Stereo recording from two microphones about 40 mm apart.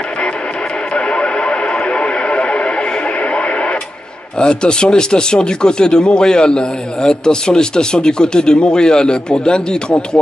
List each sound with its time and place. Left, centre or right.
0.9 s radio: left
4.4 s speech: left